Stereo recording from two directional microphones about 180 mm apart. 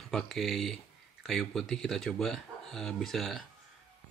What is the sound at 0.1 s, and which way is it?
Speech, centre (ahead or behind).